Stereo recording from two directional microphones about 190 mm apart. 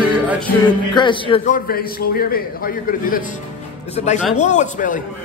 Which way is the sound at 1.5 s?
50° left (ahead or behind).